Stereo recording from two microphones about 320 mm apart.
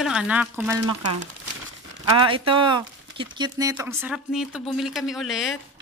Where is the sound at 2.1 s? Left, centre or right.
Centre.